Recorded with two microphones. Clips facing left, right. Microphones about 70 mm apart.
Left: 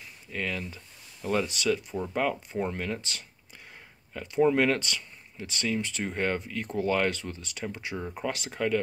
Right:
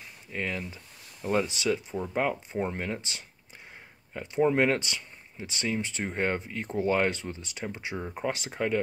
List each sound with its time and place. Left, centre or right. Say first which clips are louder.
0.3 s speech: even; right